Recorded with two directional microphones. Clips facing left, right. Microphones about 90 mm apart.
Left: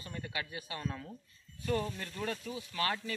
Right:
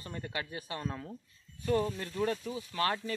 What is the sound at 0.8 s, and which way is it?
Speech, 25° right (ahead or behind).